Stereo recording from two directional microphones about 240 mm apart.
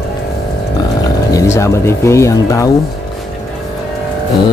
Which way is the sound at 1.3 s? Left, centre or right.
Centre.